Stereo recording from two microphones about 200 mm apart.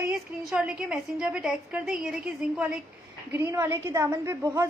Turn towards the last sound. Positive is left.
turn(degrees=-15)  # may be behind; listen again after turning